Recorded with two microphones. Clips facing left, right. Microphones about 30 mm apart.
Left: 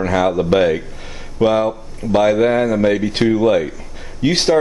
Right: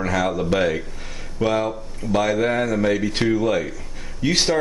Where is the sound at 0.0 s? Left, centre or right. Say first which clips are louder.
Left 6 dB; centre.